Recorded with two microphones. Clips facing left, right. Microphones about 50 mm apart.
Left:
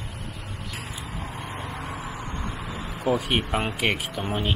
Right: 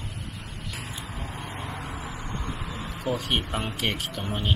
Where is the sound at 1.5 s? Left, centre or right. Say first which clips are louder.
Left 2 dB; centre.